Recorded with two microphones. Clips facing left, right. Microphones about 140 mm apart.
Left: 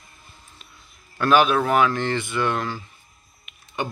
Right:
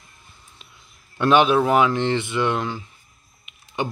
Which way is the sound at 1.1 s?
25° right (ahead or behind).